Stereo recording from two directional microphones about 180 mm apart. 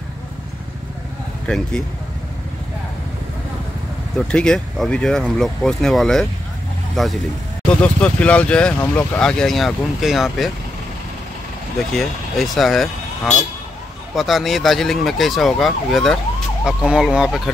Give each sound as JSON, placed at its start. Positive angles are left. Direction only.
{"t": 1.5, "sound": "speech", "side_deg": 5}
{"t": 4.2, "sound": "speech", "side_deg": 5}
{"t": 11.9, "sound": "speech", "side_deg": 0}